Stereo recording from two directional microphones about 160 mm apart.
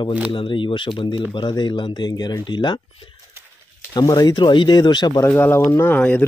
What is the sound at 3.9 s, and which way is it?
Speech, 25° left (ahead or behind).